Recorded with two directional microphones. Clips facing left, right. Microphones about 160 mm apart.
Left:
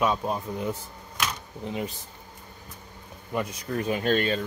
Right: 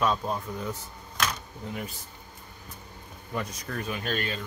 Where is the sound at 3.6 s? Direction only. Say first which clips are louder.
Left 6 dB; 25° left (ahead or behind).